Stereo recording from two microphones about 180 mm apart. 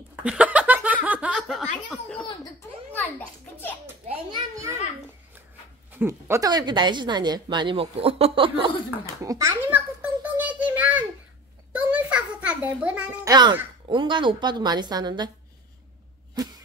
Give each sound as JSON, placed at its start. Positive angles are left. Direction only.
{"t": 0.1, "sound": "a sound", "side_deg": -5}
{"t": 2.9, "sound": "children playing", "side_deg": 10}
{"t": 4.3, "sound": "children playing", "side_deg": -15}
{"t": 5.9, "sound": "speech", "side_deg": -10}
{"t": 9.2, "sound": "a sound", "side_deg": -15}
{"t": 13.2, "sound": "a child's voice", "side_deg": -20}